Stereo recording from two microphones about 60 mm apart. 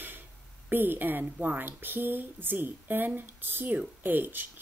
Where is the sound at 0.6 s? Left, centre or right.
Right.